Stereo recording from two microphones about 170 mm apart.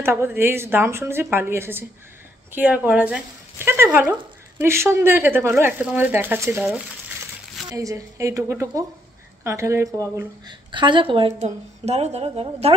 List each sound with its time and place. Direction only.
0.0 s a woman's voice: 15° right (ahead or behind); by 12.7 s 35° right (ahead or behind)